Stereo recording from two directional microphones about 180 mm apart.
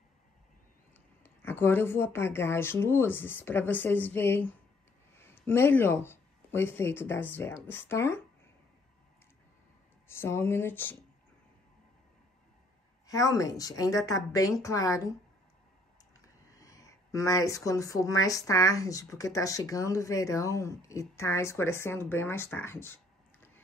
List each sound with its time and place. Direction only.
1.2 s speech: 10° left (ahead or behind)
10.0 s speech: 15° left (ahead or behind)
13.0 s a woman's voice: 20° left (ahead or behind)
16.4 s speech: 20° left (ahead or behind)